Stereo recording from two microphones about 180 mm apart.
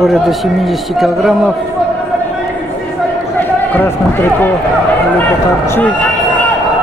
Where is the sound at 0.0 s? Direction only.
Centre (ahead or behind).